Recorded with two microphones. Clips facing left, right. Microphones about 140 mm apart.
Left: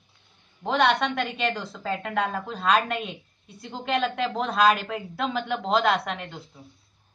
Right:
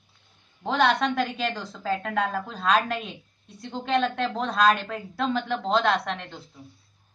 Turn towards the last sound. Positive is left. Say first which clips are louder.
# even
turn(degrees=0)  # may be behind; listen again after turning